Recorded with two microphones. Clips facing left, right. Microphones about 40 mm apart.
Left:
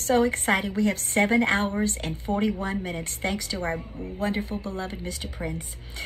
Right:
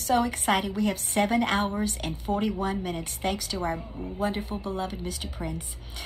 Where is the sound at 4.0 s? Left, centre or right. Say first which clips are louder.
Left 1 dB; right.